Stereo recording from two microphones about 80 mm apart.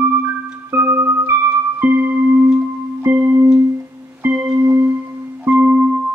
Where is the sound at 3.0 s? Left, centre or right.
Right.